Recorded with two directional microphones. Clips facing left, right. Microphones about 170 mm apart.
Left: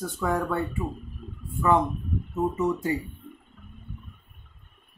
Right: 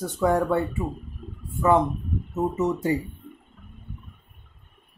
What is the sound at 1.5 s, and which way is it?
Speech, 20° right (ahead or behind).